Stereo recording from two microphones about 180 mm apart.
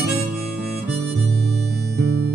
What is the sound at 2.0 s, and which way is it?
Music, 65° right (ahead or behind).